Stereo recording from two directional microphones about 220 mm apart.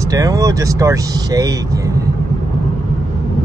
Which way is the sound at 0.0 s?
15° right (ahead or behind).